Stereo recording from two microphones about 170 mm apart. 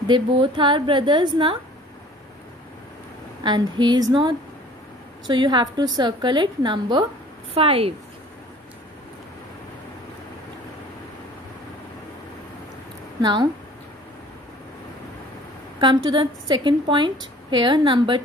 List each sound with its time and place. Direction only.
0.1 s a woman's voice: 30° right (ahead or behind)
3.4 s a woman's voice: 25° right (ahead or behind)
13.2 s a woman's voice: 25° right (ahead or behind)
15.8 s a woman's voice: 30° right (ahead or behind)